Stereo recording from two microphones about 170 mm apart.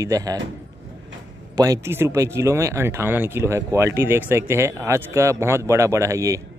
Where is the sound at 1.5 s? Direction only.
20° right (ahead or behind).